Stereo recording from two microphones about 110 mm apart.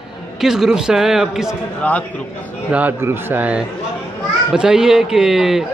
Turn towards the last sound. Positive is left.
turn(degrees=-5)  # may be behind; listen again after turning